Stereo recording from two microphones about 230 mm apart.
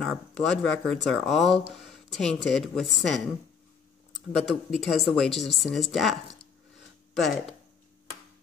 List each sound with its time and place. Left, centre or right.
0.0 s speech: centre
4.1 s speech: centre